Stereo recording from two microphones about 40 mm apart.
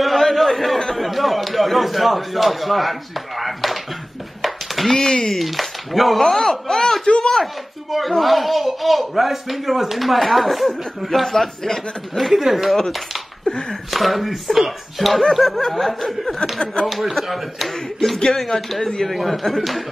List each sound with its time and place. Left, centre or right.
0.0 s a sound: centre
0.7 s a man's voice: centre
4.4 s a sound: centre
4.9 s speech: centre
5.3 s speech: centre
7.1 s speech: left
8.1 s speech: centre
12.3 s speech: centre
12.7 s speech: centre